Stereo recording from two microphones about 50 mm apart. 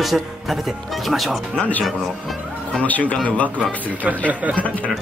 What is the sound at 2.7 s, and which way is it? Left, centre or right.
Speech, left.